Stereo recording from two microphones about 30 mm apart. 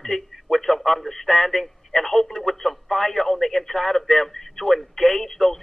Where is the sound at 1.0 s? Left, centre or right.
Centre.